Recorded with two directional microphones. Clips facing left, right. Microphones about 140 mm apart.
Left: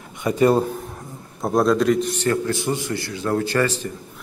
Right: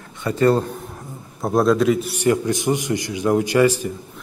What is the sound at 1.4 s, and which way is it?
A man's voice, centre (ahead or behind).